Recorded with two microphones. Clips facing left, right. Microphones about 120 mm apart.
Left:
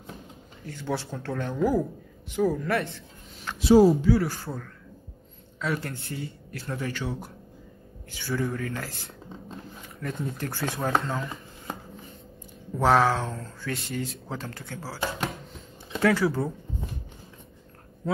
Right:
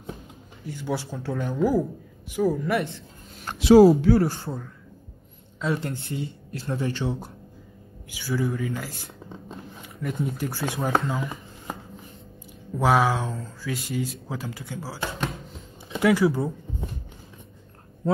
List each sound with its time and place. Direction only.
0.7 s speech: 10° right (ahead or behind)
3.5 s speech: 80° right; by 4.2 s 65° right (ahead or behind)
4.2 s speech: 35° right (ahead or behind)
5.6 s speech: 20° right (ahead or behind)
8.1 s speech: 5° right (ahead or behind)
9.9 s speech: centre (ahead or behind)
10.8 s speech: centre (ahead or behind)
12.7 s speech: 5° right (ahead or behind)
16.0 s speech: 15° right (ahead or behind)